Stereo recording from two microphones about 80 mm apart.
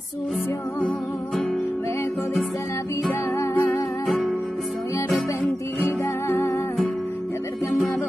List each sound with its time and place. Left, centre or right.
0.7 s music: centre
3.3 s music: left
5.9 s music: left